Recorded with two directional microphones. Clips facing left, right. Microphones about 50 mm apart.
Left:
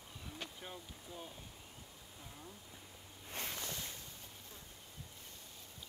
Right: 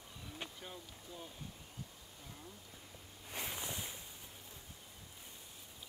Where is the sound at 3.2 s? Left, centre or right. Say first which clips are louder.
Right 1 dB; centre.